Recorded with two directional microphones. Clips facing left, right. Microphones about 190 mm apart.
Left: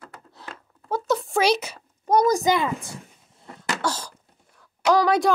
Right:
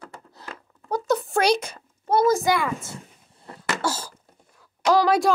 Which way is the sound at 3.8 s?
5° right (ahead or behind).